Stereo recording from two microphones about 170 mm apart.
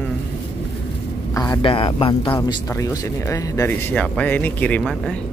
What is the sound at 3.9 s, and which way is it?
Speech, 5° left (ahead or behind).